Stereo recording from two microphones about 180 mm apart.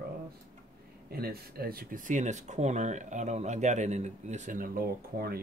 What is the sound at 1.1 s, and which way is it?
Speech, 60° right (ahead or behind).